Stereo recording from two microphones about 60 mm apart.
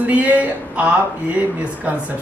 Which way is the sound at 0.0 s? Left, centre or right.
Right.